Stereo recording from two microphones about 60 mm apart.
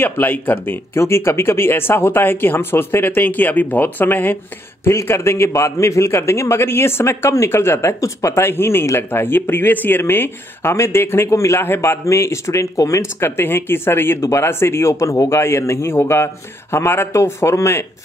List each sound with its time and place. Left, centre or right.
0.0 s speech: left
0.9 s speech: left
5.0 s a man's voice: left
12.7 s speech: left
13.2 s a man's voice: left